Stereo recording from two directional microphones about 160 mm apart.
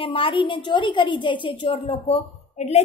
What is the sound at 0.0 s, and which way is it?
A woman's voice, 35° left (ahead or behind).